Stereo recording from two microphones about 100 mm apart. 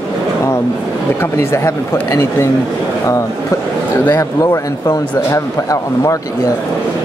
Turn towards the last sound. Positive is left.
turn(degrees=35)  # may be behind; listen again after turning